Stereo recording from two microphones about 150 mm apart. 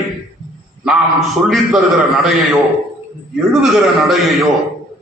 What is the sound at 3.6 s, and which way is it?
Speech, centre (ahead or behind).